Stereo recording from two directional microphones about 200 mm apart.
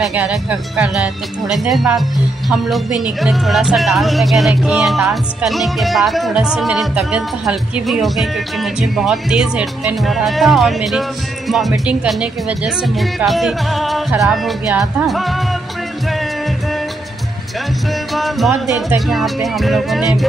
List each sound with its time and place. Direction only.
0.0 s speech: 5° right (ahead or behind)
18.1 s music: centre (ahead or behind)
18.8 s speech: centre (ahead or behind)